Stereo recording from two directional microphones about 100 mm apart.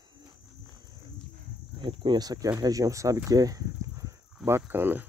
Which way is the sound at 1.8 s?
50° right (ahead or behind).